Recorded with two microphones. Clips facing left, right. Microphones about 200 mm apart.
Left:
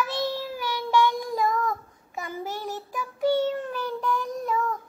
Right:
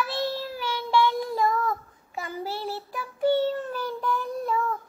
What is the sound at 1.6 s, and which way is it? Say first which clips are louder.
Child singing: even; 35° right (ahead or behind).